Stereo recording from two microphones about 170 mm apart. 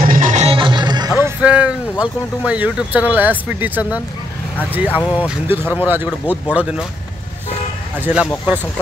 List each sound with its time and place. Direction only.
0.0 s music: 50° right (ahead or behind)
0.6 s music: 25° right (ahead or behind)
1.2 s speech: 5° right (ahead or behind)
8.0 s speech: 5° right (ahead or behind)